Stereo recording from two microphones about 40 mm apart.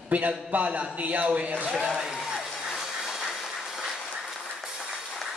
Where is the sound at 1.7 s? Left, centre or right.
Centre.